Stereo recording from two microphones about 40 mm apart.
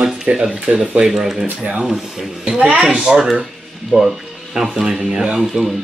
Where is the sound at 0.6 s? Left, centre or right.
Right.